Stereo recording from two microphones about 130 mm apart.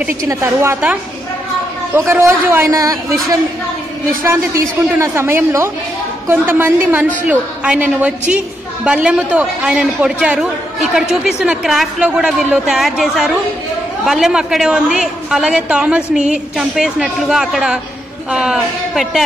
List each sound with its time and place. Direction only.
0.3 s a woman's voice: 15° right (ahead or behind)
2.0 s a man's voice: 20° right (ahead or behind)
4.9 s a man's voice: 20° right (ahead or behind); by 19.2 s 5° right (ahead or behind)